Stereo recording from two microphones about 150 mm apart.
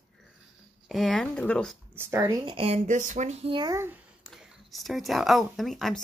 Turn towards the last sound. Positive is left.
turn(degrees=0)  # may be behind; listen again after turning